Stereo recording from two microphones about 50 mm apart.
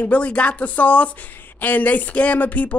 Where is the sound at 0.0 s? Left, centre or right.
Left.